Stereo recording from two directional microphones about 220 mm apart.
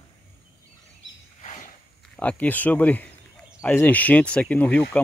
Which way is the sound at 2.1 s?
5° left (ahead or behind).